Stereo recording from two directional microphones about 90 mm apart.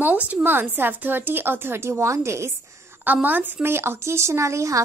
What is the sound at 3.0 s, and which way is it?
A woman's voice, 20° right (ahead or behind).